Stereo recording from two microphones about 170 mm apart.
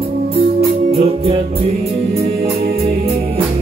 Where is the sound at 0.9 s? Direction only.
35° right (ahead or behind).